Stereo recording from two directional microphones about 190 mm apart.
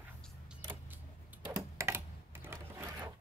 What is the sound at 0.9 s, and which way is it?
Typing, 10° right (ahead or behind).